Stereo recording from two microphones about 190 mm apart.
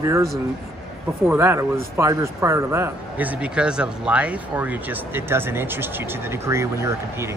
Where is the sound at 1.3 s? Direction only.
10° right (ahead or behind).